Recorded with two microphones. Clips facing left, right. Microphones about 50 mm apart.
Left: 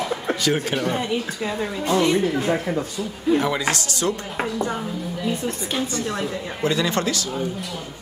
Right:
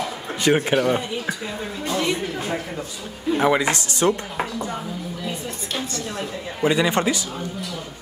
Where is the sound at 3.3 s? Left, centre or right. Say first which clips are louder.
Right 3 dB; right.